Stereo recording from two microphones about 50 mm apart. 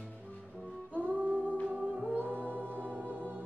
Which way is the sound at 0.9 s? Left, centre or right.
Right.